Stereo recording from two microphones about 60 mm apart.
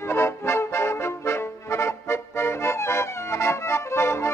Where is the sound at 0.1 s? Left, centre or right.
Left.